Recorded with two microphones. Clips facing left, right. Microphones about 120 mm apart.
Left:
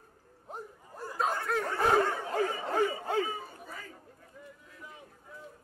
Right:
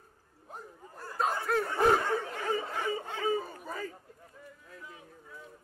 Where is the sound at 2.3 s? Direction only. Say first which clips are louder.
Left 4 dB; 40° left (ahead or behind).